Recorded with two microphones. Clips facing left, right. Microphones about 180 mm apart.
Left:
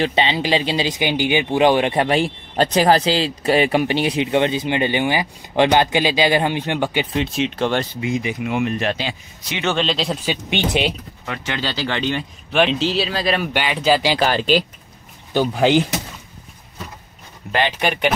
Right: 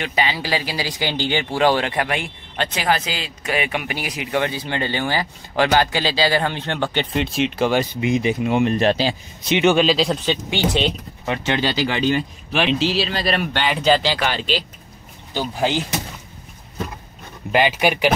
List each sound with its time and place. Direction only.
0.0 s speech: 25° left (ahead or behind); by 7.9 s 5° right (ahead or behind)
8.0 s speech: 25° right (ahead or behind)
9.5 s speech: 15° right (ahead or behind)
10.2 s speech: 15° left (ahead or behind)
11.2 s speech: 25° right (ahead or behind)
11.6 s speech: 15° right (ahead or behind); by 14.1 s 5° left (ahead or behind)
14.2 s speech: 45° left (ahead or behind)
17.5 s speech: 10° right (ahead or behind)